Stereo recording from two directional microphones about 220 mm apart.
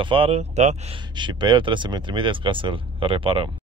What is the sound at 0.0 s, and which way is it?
Speech, 25° right (ahead or behind).